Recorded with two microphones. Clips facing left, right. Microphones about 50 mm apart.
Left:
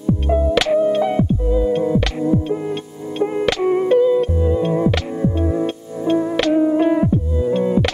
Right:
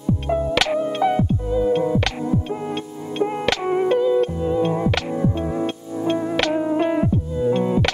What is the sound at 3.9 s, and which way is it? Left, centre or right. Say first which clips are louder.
Music: left 5 dB; centre.